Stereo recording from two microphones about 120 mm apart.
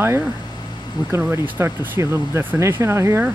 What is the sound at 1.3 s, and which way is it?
Speech, 20° right (ahead or behind).